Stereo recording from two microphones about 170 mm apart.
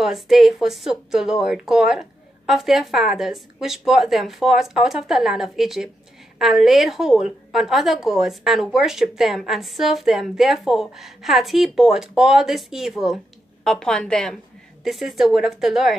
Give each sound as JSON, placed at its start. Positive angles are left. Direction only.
{"t": 0.0, "sound": "a woman's voice", "side_deg": 0}